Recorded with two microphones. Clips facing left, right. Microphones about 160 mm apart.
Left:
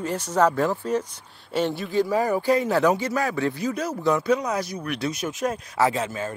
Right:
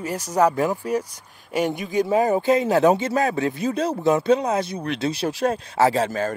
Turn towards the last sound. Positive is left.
turn(degrees=-35)  # may be behind; listen again after turning